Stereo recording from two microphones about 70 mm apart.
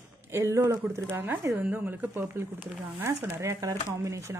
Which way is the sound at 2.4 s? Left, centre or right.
Right.